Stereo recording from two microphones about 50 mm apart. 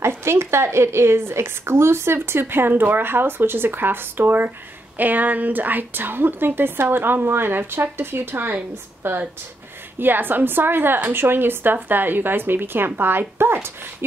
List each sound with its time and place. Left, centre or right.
0.0 s speech: right
2.1 s a woman's voice: right